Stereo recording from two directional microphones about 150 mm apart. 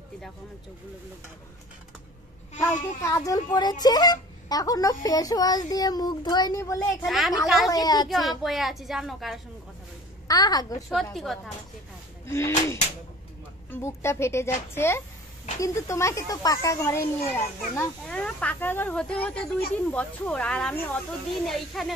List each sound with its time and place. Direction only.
2.6 s a child's voice: 20° left (ahead or behind)
7.1 s a woman's voice: centre (ahead or behind)
7.7 s a child's voice: 25° left (ahead or behind)
8.4 s a woman's voice: centre (ahead or behind)
10.2 s a child's voice: 25° left (ahead or behind)
11.3 s a woman's voice: centre (ahead or behind)
12.3 s a child's voice: 20° left (ahead or behind); by 21.9 s centre (ahead or behind)